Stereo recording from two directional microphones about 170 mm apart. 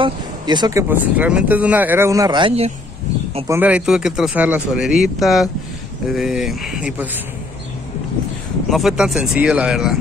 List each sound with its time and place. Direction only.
0.0 s speech: 25° right (ahead or behind)
3.4 s speech: 10° right (ahead or behind)
8.6 s speech: centre (ahead or behind)